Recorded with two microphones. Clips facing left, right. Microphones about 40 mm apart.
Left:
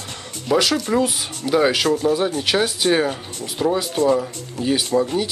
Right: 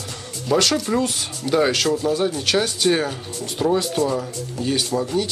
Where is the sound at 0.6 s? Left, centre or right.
Centre.